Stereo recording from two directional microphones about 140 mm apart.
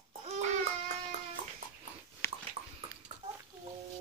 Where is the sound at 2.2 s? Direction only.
20° left (ahead or behind).